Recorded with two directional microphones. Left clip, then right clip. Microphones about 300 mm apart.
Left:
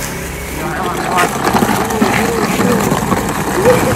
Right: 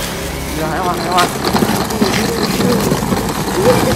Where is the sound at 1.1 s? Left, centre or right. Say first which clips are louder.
Left 2 dB; centre.